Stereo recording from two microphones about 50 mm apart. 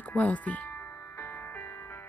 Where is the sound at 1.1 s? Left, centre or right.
Left.